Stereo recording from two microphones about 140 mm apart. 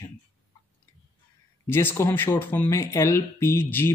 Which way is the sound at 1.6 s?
20° left (ahead or behind).